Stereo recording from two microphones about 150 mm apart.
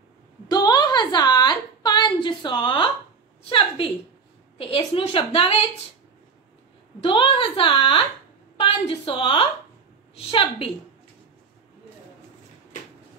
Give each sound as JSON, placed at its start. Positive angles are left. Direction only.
{"t": 0.5, "sound": "a sound", "side_deg": 30}
{"t": 3.4, "sound": "a woman's voice", "side_deg": 35}
{"t": 7.0, "sound": "a woman's voice", "side_deg": 35}